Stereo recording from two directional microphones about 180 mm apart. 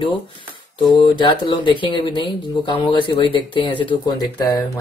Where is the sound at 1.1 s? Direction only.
25° left (ahead or behind).